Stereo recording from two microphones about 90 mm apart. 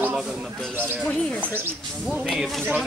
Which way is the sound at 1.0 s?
10° left (ahead or behind).